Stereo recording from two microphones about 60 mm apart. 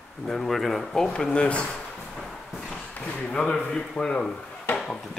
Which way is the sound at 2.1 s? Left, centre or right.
Centre.